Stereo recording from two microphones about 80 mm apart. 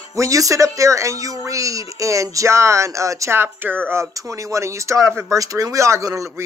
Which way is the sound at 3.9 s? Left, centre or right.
Right.